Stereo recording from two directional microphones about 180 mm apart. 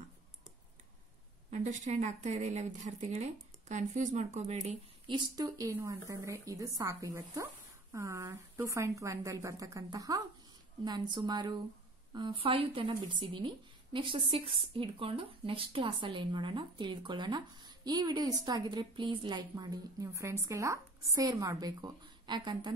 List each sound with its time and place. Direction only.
1.5 s speech: 40° right (ahead or behind)
5.1 s a woman's voice: 20° right (ahead or behind)